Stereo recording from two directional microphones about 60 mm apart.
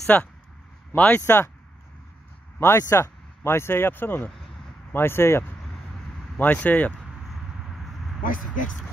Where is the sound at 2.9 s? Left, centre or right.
Left.